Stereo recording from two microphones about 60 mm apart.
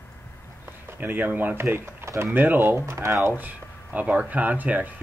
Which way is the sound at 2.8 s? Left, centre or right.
Right.